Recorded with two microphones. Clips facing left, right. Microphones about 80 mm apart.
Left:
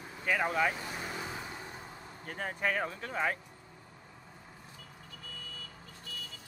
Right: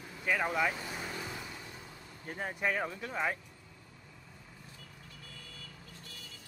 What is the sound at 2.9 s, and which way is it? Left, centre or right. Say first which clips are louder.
Speech: even; left.